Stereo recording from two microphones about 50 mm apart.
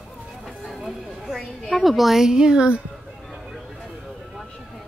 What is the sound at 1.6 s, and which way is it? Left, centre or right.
A woman's voice, centre.